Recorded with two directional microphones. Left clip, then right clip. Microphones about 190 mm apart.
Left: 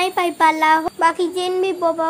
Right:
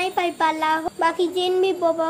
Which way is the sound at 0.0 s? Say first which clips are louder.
Left 5 dB; 20° left (ahead or behind).